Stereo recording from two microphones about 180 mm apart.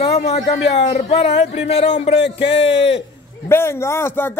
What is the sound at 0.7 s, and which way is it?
Speech, 35° left (ahead or behind).